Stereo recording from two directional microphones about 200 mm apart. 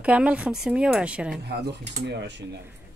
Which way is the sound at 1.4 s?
55° right (ahead or behind).